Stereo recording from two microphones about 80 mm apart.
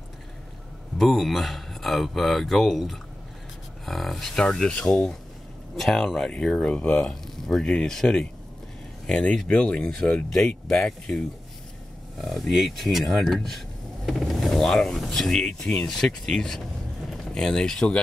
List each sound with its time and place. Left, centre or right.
0.9 s speech: centre
12.2 s speech: centre